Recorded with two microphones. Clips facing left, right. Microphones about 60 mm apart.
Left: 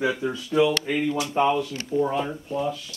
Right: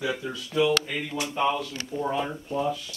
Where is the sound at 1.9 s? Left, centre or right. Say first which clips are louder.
Left 4 dB; centre.